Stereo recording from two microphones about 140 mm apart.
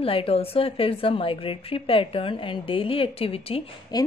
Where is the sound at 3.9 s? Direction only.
30° left (ahead or behind).